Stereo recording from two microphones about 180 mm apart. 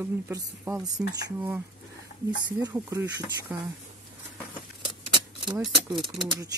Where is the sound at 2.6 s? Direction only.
10° right (ahead or behind).